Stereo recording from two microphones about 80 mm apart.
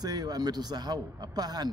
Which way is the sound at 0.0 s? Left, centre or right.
Right.